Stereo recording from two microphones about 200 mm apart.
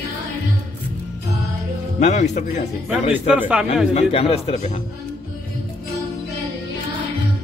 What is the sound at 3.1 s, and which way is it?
Speech, 10° right (ahead or behind).